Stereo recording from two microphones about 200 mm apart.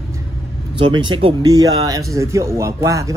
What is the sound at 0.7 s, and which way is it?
Speech, 25° right (ahead or behind).